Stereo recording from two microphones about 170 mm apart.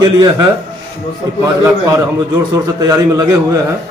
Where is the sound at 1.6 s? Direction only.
20° right (ahead or behind).